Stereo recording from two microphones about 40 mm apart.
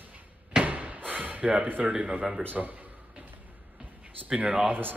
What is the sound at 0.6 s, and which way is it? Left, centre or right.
Slam, right.